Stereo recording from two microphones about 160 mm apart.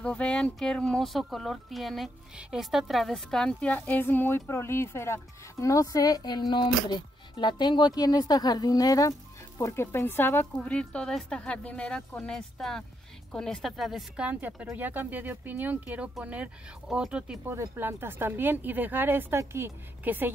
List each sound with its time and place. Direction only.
0.0 s speech: 5° left (ahead or behind); by 20.2 s 10° right (ahead or behind)